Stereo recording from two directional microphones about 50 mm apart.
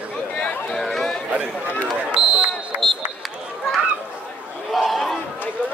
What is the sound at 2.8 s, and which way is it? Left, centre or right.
Run, centre.